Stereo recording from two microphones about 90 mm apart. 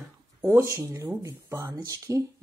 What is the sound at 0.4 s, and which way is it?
Speech, 30° right (ahead or behind).